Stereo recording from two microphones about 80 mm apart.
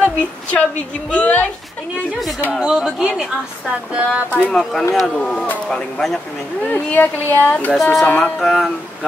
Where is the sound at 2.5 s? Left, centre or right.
Centre.